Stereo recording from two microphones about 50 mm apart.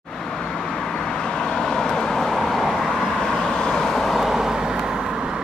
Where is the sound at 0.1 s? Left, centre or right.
Centre.